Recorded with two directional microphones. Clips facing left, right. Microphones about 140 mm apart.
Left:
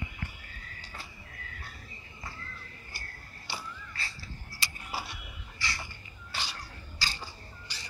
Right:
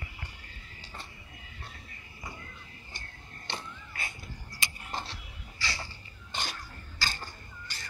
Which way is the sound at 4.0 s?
20° right (ahead or behind).